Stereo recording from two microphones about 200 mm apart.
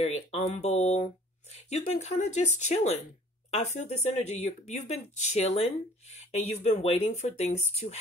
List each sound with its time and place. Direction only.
0.0 s speech: 30° left (ahead or behind)